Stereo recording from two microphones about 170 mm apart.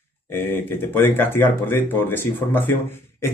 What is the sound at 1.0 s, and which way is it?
Speech, 10° left (ahead or behind).